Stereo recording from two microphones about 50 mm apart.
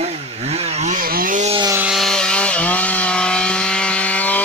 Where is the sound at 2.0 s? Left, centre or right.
Centre.